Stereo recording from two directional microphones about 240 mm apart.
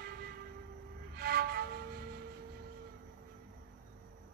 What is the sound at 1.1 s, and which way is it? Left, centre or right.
Music, right.